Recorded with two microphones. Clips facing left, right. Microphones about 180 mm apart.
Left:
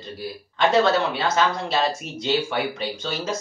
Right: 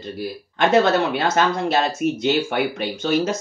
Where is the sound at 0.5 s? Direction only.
50° right (ahead or behind).